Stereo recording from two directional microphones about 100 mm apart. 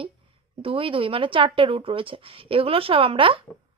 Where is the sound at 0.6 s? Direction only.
65° right (ahead or behind).